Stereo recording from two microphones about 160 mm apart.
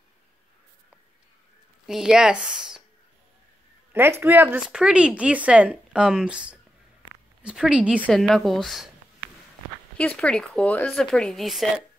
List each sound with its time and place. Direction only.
1.9 s speech: 5° right (ahead or behind)
3.9 s speech: 15° right (ahead or behind)
9.9 s speech: 5° left (ahead or behind)